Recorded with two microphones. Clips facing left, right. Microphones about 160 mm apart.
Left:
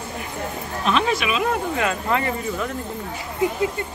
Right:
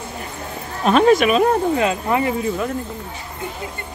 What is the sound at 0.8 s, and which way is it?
Speech, 45° right (ahead or behind).